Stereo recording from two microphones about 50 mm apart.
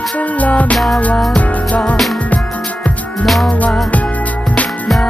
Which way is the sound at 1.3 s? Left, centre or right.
Left.